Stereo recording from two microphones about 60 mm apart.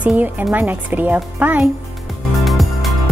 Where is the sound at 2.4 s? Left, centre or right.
Centre.